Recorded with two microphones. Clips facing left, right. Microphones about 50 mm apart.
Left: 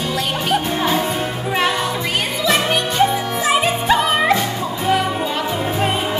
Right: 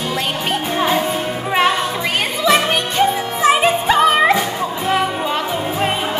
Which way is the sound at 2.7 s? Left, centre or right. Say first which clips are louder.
Even; right.